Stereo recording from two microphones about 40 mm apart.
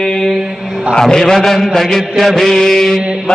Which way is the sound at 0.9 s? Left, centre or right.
Centre.